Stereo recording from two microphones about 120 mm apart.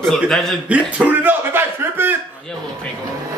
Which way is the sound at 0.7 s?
10° right (ahead or behind).